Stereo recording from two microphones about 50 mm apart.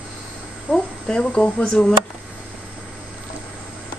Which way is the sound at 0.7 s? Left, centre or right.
Centre.